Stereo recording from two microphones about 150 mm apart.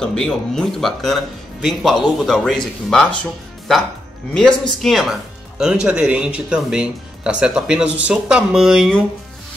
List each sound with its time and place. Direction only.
0.0 s speech: 5° left (ahead or behind)
4.3 s speech: 5° left (ahead or behind)